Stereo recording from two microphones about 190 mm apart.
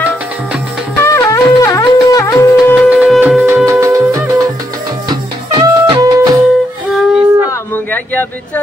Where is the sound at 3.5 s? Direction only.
15° right (ahead or behind).